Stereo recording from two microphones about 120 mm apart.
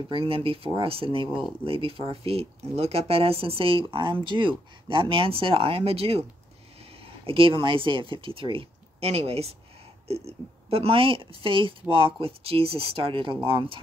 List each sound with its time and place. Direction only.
0.1 s speech: 45° right (ahead or behind)
7.2 s speech: 50° right (ahead or behind)